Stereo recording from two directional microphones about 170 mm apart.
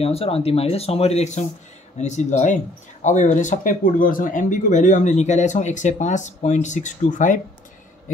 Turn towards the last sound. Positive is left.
turn(degrees=50)  # may be behind; listen again after turning